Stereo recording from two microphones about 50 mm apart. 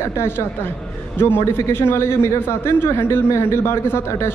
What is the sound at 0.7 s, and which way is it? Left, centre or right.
A woman's voice, left.